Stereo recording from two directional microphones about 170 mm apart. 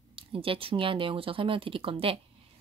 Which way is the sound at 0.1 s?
30° right (ahead or behind).